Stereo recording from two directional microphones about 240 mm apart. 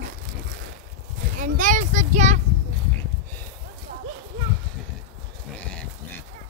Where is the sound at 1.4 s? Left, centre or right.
Right.